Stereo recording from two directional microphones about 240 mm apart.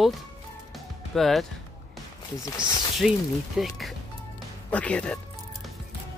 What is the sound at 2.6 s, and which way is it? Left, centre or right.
Speech, centre.